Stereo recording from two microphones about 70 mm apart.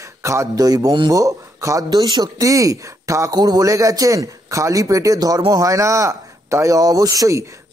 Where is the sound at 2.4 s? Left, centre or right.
Right.